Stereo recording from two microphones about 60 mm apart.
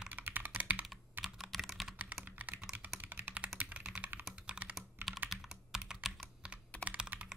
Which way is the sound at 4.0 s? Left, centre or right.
Right.